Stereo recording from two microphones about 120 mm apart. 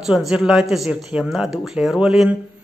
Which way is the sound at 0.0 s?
5° right (ahead or behind).